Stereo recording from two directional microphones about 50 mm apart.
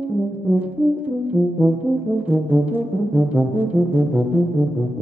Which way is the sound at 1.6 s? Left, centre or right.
Right.